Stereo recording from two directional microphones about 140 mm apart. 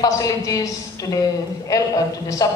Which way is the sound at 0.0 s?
25° left (ahead or behind).